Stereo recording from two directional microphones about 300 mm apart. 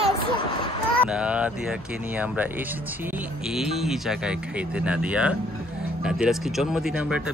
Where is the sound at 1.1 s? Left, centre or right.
Centre.